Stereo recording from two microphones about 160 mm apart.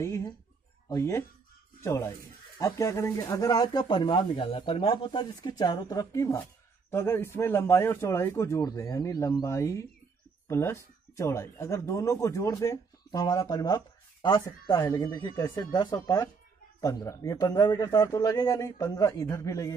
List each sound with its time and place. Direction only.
0.0 s speech: 20° left (ahead or behind)